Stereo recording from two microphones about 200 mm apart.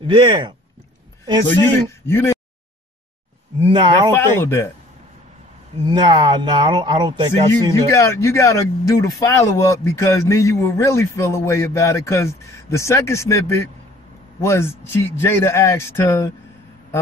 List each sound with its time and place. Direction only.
0.0 s speech: 25° right (ahead or behind)
2.0 s speech: 10° left (ahead or behind)
3.6 s speech: 25° right (ahead or behind)
4.1 s speech: 10° left (ahead or behind)
5.9 s speech: 20° right (ahead or behind)
7.9 s speech: 15° left (ahead or behind)